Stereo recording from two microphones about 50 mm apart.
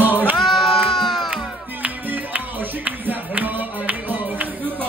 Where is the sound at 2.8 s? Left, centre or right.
Right.